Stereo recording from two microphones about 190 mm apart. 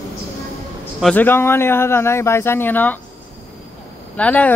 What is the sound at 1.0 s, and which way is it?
Speech, 10° left (ahead or behind).